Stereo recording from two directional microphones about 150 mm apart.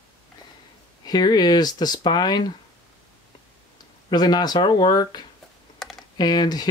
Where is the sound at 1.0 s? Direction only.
30° left (ahead or behind).